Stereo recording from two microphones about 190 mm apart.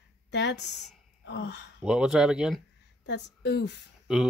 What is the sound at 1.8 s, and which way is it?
Speech, 5° right (ahead or behind).